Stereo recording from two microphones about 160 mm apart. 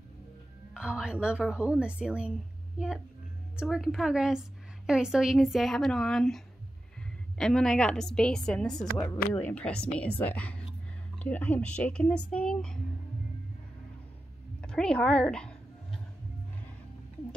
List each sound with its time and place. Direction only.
0.7 s speech: 5° right (ahead or behind)
3.5 s a woman's voice: centre (ahead or behind)
8.9 s speech: 15° left (ahead or behind)
9.3 s speech: 5° left (ahead or behind)
14.6 s a woman's voice: 5° left (ahead or behind)